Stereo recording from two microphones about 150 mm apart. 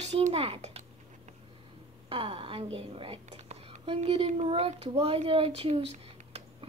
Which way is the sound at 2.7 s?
40° right (ahead or behind).